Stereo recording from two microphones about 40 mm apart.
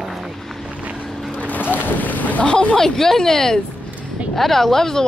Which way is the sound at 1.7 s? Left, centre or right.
Left.